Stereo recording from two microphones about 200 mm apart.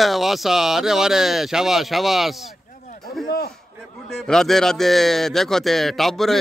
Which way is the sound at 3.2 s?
50° left (ahead or behind).